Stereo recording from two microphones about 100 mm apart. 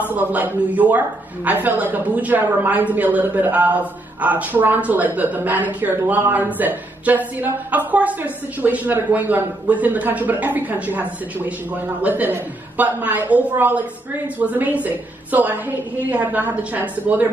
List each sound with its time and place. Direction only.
0.0 s speech: 15° right (ahead or behind)